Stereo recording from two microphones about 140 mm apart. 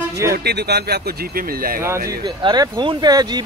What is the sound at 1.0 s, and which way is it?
Speech, 90° right.